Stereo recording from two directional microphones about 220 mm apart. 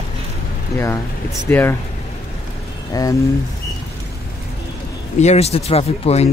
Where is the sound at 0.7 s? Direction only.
15° left (ahead or behind).